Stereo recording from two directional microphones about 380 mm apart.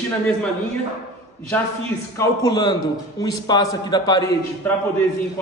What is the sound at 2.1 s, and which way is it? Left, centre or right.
A man's voice, centre.